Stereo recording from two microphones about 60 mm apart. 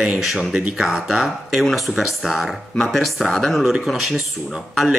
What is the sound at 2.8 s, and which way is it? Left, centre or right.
Speech, centre.